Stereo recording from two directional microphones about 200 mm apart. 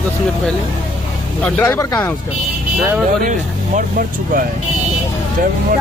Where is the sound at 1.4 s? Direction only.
10° left (ahead or behind).